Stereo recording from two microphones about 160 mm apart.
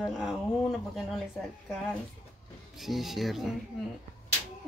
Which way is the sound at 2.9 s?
Centre (ahead or behind).